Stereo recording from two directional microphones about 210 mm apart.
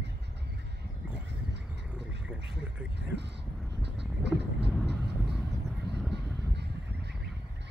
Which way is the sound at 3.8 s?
55° right (ahead or behind).